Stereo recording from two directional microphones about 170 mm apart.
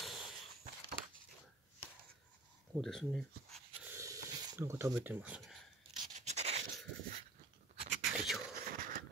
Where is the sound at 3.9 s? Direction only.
20° right (ahead or behind).